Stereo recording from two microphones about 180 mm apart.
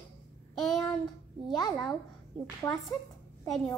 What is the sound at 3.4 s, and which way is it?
Speech, centre (ahead or behind).